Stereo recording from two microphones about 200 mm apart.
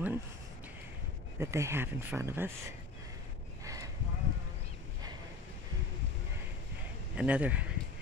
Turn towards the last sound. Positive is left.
turn(degrees=-5)  # may be behind; listen again after turning